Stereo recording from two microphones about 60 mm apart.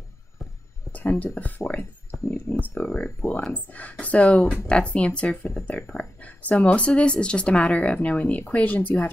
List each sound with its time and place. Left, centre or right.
0.9 s speech: left
1.8 s a sound: left
2.8 s speech: left